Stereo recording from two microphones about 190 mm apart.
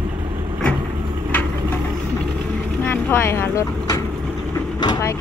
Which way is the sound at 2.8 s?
10° left (ahead or behind).